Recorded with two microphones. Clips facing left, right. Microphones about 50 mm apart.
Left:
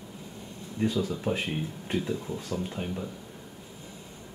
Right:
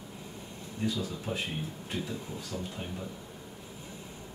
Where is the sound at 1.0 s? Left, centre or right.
Left.